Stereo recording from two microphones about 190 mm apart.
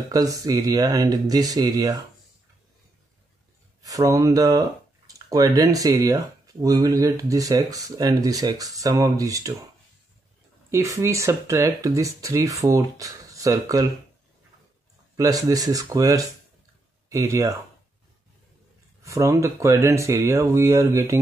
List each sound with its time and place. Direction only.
0.1 s speech: 20° right (ahead or behind)
3.8 s speech: 15° right (ahead or behind)
10.7 s speech: 15° right (ahead or behind)
15.1 s speech: 20° right (ahead or behind)
19.0 s speech: 15° right (ahead or behind)